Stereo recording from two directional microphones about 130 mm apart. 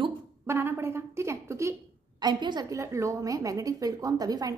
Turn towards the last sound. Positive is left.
turn(degrees=-30)  # may be behind; listen again after turning